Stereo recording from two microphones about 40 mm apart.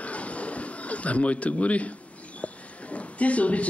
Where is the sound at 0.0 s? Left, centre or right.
Left.